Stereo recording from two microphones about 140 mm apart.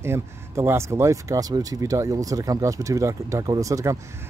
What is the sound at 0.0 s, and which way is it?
Speech, 20° right (ahead or behind).